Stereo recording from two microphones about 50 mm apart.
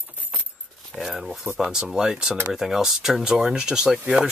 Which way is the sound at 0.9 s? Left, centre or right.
Centre.